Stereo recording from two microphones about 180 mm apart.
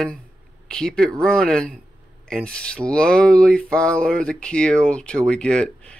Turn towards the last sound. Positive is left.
turn(degrees=5)  # may be behind; listen again after turning